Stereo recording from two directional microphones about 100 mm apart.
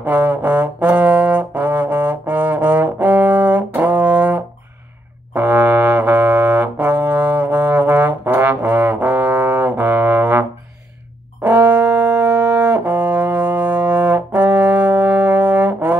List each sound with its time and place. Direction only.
0.0 s brass instrument: 15° right (ahead or behind)
11.4 s brass instrument: 15° right (ahead or behind)